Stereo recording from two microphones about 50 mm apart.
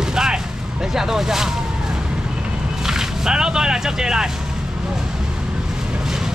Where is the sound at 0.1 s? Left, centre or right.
Centre.